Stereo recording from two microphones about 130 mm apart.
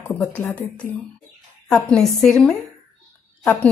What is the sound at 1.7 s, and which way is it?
A woman's voice, 5° left (ahead or behind).